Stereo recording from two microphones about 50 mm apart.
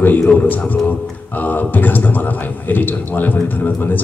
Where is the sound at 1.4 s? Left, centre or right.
Left.